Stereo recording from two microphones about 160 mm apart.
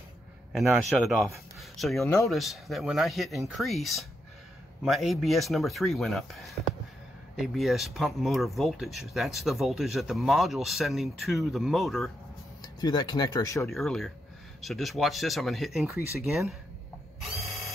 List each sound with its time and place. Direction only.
0.5 s speech: centre (ahead or behind)
12.8 s speech: 25° left (ahead or behind)
13.7 s speech: centre (ahead or behind)